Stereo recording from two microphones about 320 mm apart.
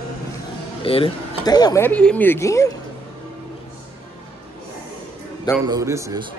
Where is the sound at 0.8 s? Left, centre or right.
Centre.